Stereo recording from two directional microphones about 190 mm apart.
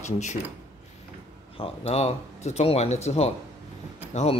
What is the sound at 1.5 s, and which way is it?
Speech, 30° left (ahead or behind).